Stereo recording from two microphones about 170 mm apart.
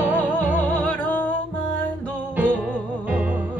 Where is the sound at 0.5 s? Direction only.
10° left (ahead or behind).